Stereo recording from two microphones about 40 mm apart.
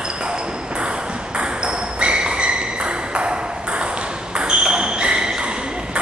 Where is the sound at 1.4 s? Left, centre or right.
Right.